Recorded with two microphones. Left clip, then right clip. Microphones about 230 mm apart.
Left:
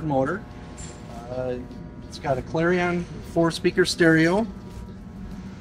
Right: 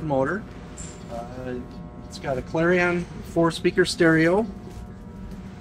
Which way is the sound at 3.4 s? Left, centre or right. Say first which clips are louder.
Right 1 dB; centre.